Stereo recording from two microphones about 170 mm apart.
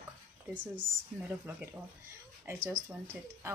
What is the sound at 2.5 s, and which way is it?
Speech, 15° right (ahead or behind).